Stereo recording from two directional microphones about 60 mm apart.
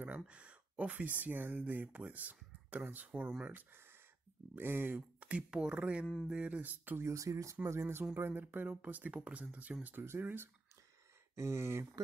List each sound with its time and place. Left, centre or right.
0.0 s speech: right
3.1 s speech: centre
4.6 s speech: right
5.2 s speech: centre; by 7.1 s right
7.1 s speech: right
7.6 s speech: right
10.2 s speech: right
11.3 s speech: right